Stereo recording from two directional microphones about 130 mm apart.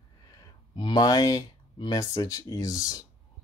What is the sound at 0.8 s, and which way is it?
Speech, 35° left (ahead or behind).